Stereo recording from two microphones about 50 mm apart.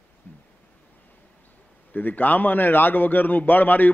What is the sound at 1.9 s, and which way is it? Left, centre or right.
A man's voice, left.